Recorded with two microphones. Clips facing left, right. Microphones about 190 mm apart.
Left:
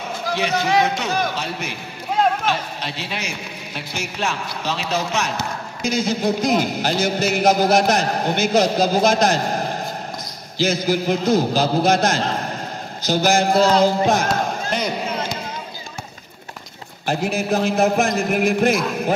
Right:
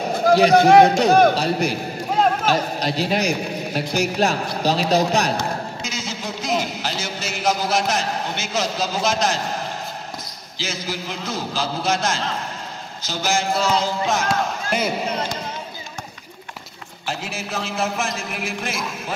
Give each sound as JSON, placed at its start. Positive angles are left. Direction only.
{"t": 0.3, "sound": "a man's voice", "side_deg": -40}
{"t": 0.6, "sound": "a man's voice", "side_deg": -55}
{"t": 0.8, "sound": "a man's voice", "side_deg": -35}
{"t": 5.8, "sound": "a man's voice", "side_deg": 55}
{"t": 14.7, "sound": "speech", "side_deg": -5}
{"t": 17.0, "sound": "a man's voice", "side_deg": 55}